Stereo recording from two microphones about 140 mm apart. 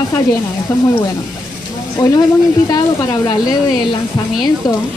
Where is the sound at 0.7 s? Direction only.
15° left (ahead or behind).